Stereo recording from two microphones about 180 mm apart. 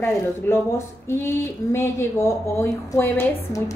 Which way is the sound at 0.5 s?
15° left (ahead or behind).